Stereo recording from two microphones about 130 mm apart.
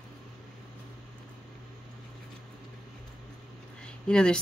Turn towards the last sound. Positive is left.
turn(degrees=5)  # may be behind; listen again after turning